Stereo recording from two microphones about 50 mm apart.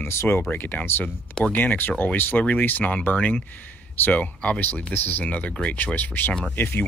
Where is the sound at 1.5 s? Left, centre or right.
Left.